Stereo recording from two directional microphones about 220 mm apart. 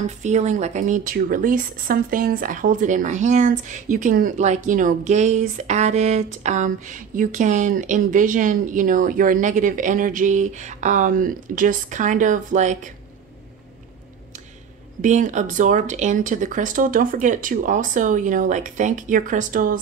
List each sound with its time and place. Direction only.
0.0 s speech: 30° right (ahead or behind)
15.0 s speech: 35° right (ahead or behind)